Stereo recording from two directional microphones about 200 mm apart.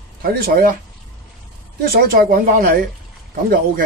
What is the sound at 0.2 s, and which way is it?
Speech, 50° right (ahead or behind).